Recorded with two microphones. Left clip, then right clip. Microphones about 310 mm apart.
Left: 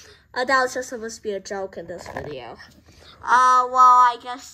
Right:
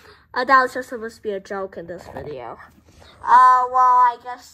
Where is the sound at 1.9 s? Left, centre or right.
Right.